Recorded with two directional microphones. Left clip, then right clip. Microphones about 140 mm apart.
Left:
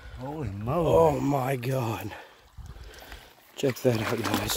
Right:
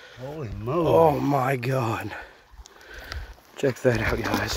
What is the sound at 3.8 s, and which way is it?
Speech, centre (ahead or behind).